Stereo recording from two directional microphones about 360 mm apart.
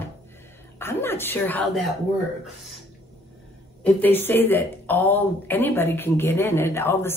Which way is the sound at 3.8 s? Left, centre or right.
Centre.